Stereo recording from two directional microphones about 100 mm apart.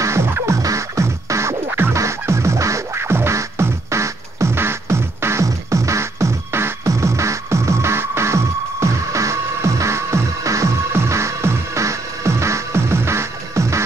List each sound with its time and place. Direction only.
0.0 s music: 25° right (ahead or behind)